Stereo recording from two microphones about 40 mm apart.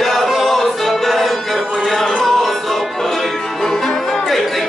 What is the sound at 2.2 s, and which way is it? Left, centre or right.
Music, centre.